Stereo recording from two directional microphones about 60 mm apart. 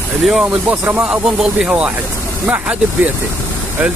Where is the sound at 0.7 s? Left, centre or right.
Right.